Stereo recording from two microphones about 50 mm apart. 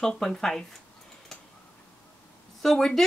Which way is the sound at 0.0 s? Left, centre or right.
Centre.